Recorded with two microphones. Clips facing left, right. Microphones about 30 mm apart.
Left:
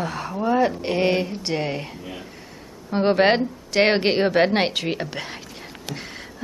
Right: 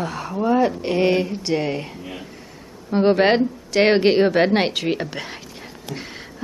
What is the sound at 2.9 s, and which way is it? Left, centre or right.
A woman's voice, centre.